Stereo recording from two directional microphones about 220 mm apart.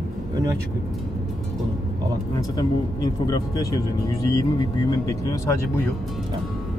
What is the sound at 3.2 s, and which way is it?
Speech, 20° left (ahead or behind).